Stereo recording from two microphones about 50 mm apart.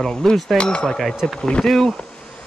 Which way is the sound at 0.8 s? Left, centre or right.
Centre.